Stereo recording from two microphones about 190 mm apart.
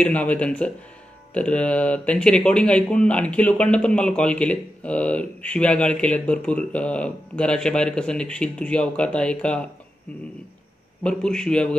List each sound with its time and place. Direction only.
0.0 s speech: 5° left (ahead or behind)
11.0 s speech: 5° left (ahead or behind)